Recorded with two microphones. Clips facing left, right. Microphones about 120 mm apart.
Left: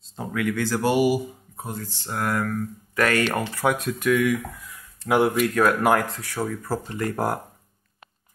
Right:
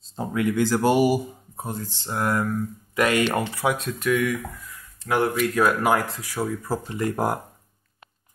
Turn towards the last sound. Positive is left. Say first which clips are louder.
# right 1 dB
turn(degrees=-15)  # may be behind; listen again after turning